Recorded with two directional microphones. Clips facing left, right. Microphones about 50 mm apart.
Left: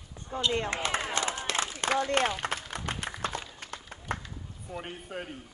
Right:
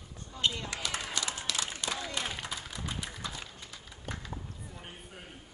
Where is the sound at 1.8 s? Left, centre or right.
Left.